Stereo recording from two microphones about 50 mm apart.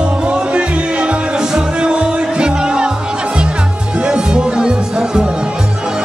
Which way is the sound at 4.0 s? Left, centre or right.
Centre.